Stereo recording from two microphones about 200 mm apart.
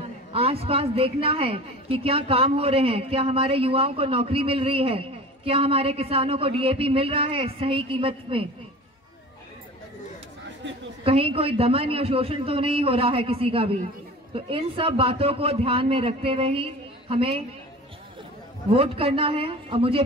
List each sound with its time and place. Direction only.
0.3 s a woman's voice: 30° right (ahead or behind)
11.1 s a woman's voice: 30° right (ahead or behind)
18.7 s a woman's voice: 30° right (ahead or behind)